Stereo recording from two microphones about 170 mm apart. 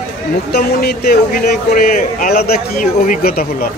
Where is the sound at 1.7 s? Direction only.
55° left (ahead or behind).